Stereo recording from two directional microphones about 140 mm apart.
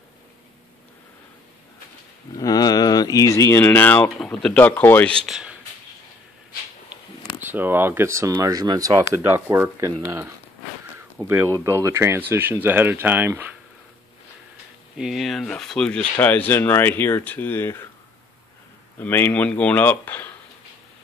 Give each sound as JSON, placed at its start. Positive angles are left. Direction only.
{"t": 2.3, "sound": "speech", "side_deg": 25}
{"t": 5.3, "sound": "a sound", "side_deg": -5}
{"t": 7.4, "sound": "speech", "side_deg": -15}
{"t": 11.1, "sound": "speech", "side_deg": -20}
{"t": 15.0, "sound": "speech", "side_deg": 0}
{"t": 18.9, "sound": "speech", "side_deg": 15}